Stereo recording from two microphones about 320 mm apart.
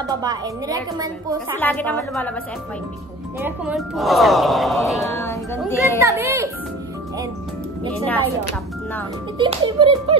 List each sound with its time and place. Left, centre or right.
0.1 s a woman's voice: centre
1.6 s speech: centre
3.3 s speech: centre
5.9 s a woman's voice: centre
9.4 s a woman's voice: centre